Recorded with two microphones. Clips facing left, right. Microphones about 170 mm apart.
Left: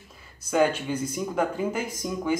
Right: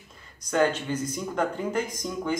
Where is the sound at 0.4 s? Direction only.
10° left (ahead or behind).